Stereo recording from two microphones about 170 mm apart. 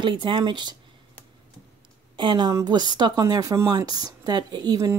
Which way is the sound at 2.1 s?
25° right (ahead or behind).